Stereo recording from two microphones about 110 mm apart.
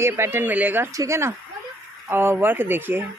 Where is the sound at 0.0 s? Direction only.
20° right (ahead or behind).